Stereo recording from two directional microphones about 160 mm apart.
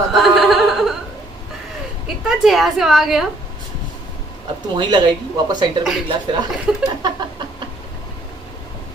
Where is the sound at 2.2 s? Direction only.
Centre (ahead or behind).